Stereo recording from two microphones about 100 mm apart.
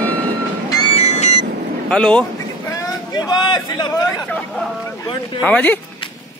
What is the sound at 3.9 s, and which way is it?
Speech, 40° left (ahead or behind).